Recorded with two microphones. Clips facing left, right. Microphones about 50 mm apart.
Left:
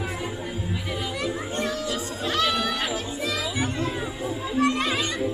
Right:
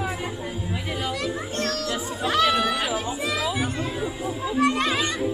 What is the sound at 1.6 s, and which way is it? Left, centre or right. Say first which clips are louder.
Children playing: right 1 dB; centre.